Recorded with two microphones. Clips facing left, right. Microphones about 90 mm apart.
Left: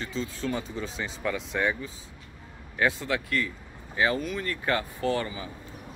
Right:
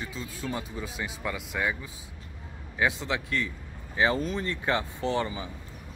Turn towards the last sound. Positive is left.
turn(degrees=-25)  # may be behind; listen again after turning